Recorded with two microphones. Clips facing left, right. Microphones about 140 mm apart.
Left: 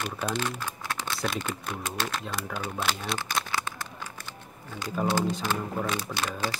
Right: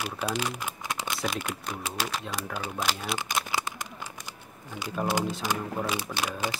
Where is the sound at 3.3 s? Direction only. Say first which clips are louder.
Even; 10° right (ahead or behind).